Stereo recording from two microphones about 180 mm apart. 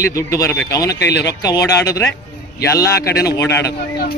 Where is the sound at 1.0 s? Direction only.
70° left (ahead or behind).